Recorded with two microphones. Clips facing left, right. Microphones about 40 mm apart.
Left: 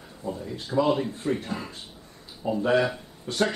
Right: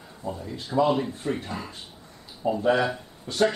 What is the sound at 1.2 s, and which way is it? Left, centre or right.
Speech, centre.